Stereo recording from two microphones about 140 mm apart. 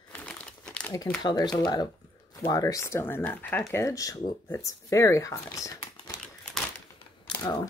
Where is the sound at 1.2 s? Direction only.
30° left (ahead or behind).